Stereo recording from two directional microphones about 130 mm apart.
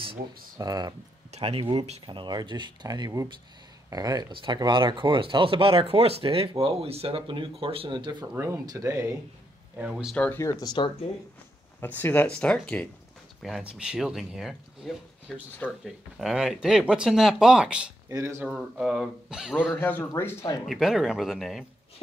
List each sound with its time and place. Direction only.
0.6 s speech: 30° right (ahead or behind)
1.3 s speech: 50° right (ahead or behind)
8.4 s speech: 25° right (ahead or behind)
9.8 s speech: 5° right (ahead or behind)
10.1 s speech: 10° left (ahead or behind)
10.4 s speech: 30° left (ahead or behind)
11.8 s speech: 15° left (ahead or behind)
13.4 s speech: centre (ahead or behind)
18.0 s speech: 20° right (ahead or behind)
18.5 s speech: 5° right (ahead or behind)
19.8 s speech: 15° left (ahead or behind)
20.6 s speech: centre (ahead or behind)